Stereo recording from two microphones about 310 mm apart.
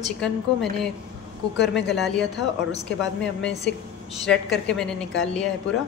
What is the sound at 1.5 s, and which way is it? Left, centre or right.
Speech, left.